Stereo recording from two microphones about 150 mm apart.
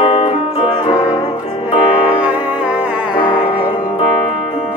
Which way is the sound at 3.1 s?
35° left (ahead or behind).